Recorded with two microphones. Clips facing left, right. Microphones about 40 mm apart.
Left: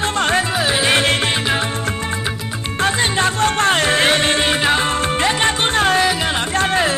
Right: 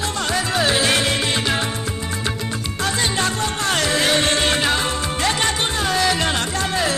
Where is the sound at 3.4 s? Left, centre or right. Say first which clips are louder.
Left 7 dB; left.